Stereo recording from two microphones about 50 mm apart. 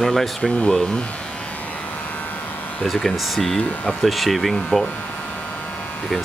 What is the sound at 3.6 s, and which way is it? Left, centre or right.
Speech, left.